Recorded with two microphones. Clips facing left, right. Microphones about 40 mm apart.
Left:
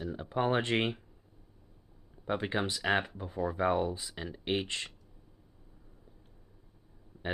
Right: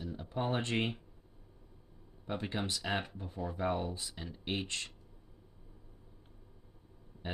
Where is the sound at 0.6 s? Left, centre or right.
Left.